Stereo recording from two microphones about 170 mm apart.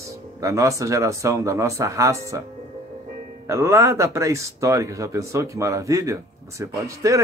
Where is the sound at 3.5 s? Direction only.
15° right (ahead or behind).